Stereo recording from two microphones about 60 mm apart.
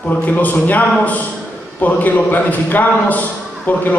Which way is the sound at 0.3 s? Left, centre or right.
Left.